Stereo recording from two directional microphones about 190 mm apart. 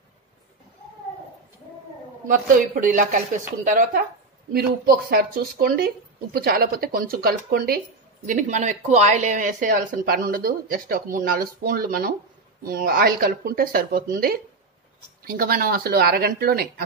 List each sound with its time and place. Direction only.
2.2 s speech: 45° right (ahead or behind)
8.3 s speech: 40° right (ahead or behind)